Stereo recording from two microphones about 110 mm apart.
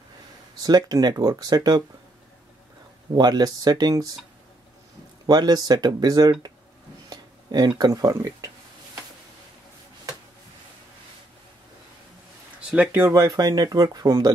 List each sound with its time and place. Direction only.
0.6 s speech: 35° right (ahead or behind)
3.2 s speech: 40° right (ahead or behind)
5.2 s speech: 35° right (ahead or behind)
12.5 s speech: 10° right (ahead or behind)
13.1 s speech: 35° right (ahead or behind)